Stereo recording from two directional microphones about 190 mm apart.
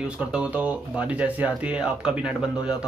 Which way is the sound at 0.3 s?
5° right (ahead or behind).